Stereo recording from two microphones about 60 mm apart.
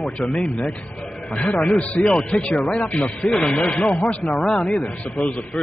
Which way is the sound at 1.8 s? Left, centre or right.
Centre.